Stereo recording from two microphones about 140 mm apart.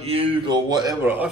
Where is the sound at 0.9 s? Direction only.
15° right (ahead or behind).